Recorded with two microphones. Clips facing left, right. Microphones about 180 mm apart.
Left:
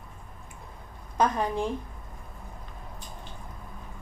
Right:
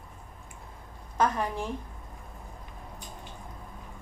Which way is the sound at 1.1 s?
20° left (ahead or behind).